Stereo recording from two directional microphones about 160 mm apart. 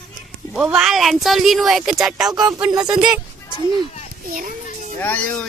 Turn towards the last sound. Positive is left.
turn(degrees=10)  # may be behind; listen again after turning